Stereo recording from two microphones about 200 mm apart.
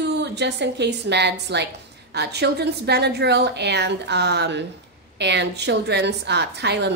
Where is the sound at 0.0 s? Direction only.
60° right (ahead or behind).